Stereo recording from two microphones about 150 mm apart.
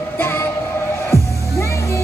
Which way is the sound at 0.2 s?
15° left (ahead or behind).